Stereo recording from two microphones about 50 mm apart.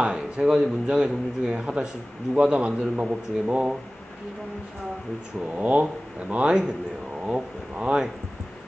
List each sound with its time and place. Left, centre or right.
0.0 s a man's voice: centre
5.6 s a man's voice: right